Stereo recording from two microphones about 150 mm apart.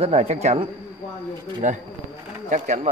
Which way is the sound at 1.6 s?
55° right (ahead or behind).